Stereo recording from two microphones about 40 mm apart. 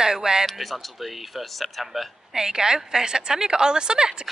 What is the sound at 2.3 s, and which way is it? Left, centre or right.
A woman's voice, centre.